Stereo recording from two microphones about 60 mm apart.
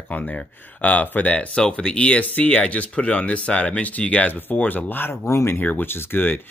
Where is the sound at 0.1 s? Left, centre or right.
Left.